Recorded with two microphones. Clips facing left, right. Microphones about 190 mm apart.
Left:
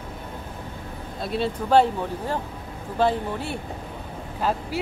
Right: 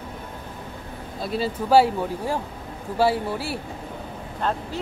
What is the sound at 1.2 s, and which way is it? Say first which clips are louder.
Speech: even; centre (ahead or behind).